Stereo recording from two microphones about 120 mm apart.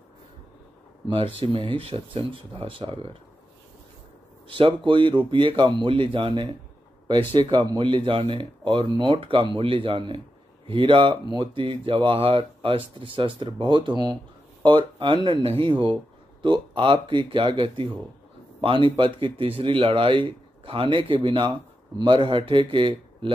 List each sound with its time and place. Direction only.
1.0 s speech: 45° right (ahead or behind)
4.5 s speech: 45° right (ahead or behind)